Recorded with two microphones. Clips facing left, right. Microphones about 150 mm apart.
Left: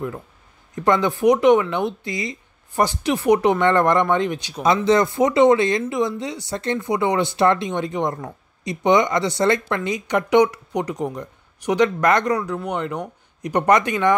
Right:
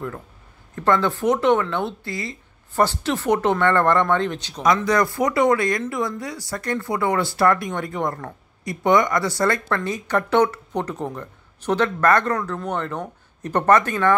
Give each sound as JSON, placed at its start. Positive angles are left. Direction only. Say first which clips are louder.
{"t": 0.7, "sound": "speech", "louder": "left 1 dB", "side_deg": 15}
{"t": 4.8, "sound": "speech", "louder": "left 3 dB", "side_deg": 25}